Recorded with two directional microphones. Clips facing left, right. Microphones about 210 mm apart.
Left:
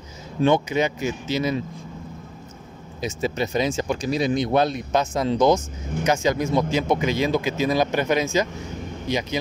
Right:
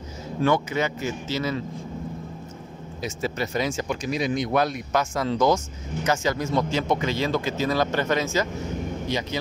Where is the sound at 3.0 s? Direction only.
20° left (ahead or behind).